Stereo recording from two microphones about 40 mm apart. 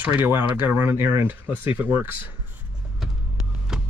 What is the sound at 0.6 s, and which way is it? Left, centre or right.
Speech, right.